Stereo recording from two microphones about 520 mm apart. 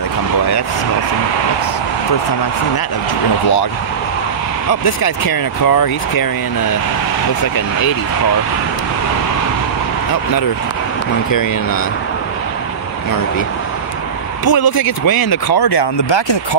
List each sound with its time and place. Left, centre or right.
4.6 s speech: left
14.4 s speech: left